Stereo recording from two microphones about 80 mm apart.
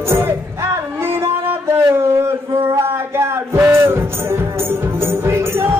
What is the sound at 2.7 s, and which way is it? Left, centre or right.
Music, right.